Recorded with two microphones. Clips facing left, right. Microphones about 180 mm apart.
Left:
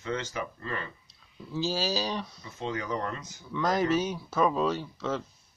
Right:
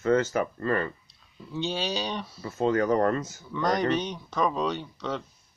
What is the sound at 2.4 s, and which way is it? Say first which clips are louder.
Speech: right 10 dB; 50° right (ahead or behind).